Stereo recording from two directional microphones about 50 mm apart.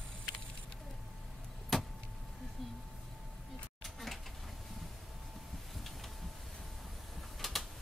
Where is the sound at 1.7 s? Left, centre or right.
Centre.